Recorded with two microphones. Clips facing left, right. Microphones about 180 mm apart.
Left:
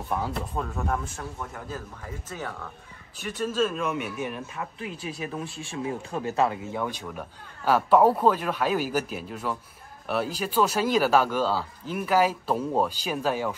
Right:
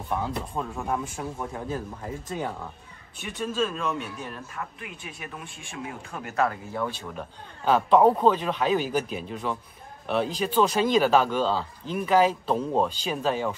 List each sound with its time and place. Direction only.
0.1 s a man's voice: centre (ahead or behind)
0.7 s a man's voice: 15° right (ahead or behind)
3.3 s a man's voice: centre (ahead or behind)
4.6 s speech: 30° left (ahead or behind)
6.8 s a man's voice: 15° left (ahead or behind)